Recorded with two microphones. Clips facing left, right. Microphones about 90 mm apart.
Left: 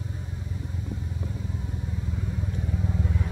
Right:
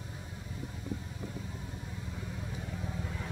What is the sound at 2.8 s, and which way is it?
Vehicle, 10° left (ahead or behind).